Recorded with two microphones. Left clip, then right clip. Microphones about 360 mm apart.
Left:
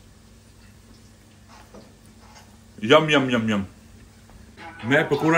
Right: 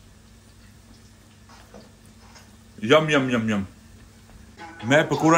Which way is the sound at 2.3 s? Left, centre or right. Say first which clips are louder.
Left 1 dB; centre.